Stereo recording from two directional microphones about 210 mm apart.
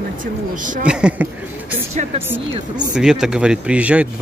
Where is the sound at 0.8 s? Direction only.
5° right (ahead or behind).